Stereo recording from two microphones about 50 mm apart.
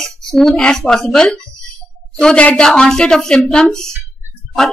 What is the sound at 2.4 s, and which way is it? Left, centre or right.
Speech, left.